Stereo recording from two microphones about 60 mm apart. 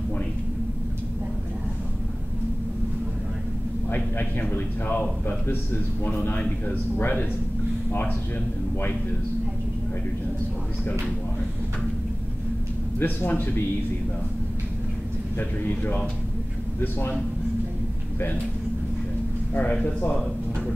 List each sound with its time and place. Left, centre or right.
4.5 s a man's voice: left
13.0 s a man's voice: left
15.7 s a man's voice: left
19.5 s a man's voice: left